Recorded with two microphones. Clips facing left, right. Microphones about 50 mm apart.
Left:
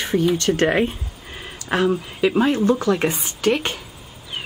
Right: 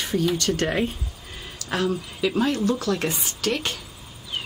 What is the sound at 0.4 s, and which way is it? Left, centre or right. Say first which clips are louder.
A woman's voice: left 5 dB; left.